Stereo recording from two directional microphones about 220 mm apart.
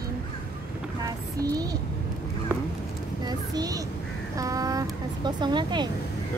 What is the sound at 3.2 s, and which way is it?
Speech, 15° right (ahead or behind).